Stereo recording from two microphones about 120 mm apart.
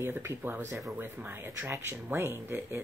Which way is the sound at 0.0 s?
20° right (ahead or behind).